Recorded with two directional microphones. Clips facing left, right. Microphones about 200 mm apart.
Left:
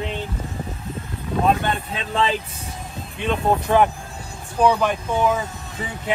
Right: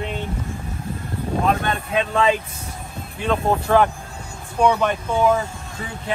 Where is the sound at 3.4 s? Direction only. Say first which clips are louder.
Even; 15° left (ahead or behind).